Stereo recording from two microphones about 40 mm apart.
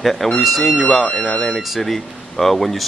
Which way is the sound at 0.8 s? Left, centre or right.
Centre.